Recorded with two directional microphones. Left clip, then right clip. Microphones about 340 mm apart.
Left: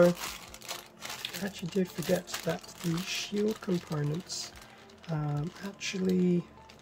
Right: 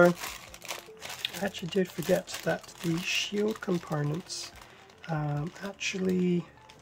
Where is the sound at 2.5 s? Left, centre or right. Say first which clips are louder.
Right 4 dB; centre.